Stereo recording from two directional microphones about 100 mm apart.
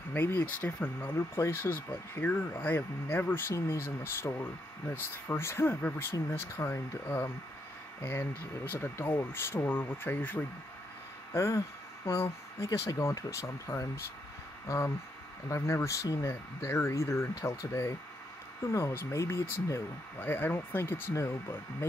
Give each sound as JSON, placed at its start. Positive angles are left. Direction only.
{"t": 0.1, "sound": "speech", "side_deg": 20}
{"t": 1.1, "sound": "speech", "side_deg": 25}
{"t": 11.3, "sound": "speech", "side_deg": 30}
{"t": 15.4, "sound": "speech", "side_deg": 30}